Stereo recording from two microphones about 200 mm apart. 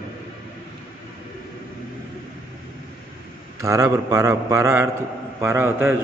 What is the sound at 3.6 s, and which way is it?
A man's voice, 15° right (ahead or behind).